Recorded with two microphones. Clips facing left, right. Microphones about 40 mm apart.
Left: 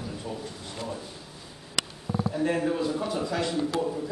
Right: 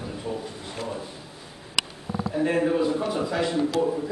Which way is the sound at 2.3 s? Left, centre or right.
Centre.